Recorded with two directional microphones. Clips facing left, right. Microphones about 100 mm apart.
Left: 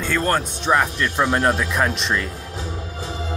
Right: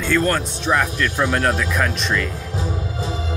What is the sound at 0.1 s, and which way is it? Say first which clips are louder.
Speech: right 2 dB; 25° left (ahead or behind).